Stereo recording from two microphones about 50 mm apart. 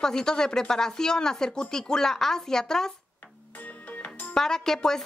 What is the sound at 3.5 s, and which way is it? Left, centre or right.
Music, left.